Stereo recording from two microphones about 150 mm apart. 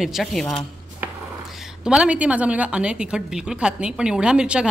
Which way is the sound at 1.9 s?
5° right (ahead or behind).